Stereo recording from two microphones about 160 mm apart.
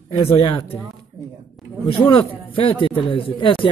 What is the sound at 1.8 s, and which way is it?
A man's voice, 30° left (ahead or behind).